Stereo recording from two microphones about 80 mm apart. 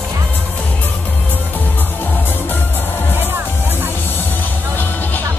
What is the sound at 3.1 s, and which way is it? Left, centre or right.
Music, right.